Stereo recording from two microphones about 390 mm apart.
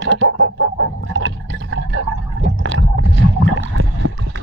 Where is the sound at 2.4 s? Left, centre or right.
Right.